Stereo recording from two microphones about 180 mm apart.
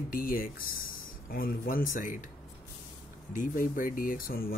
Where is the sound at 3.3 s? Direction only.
50° left (ahead or behind).